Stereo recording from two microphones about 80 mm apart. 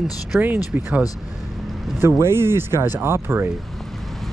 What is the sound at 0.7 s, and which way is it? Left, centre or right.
Speech, centre.